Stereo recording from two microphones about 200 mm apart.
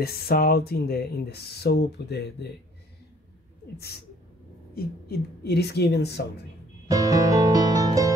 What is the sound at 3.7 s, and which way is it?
Speech, 50° left (ahead or behind).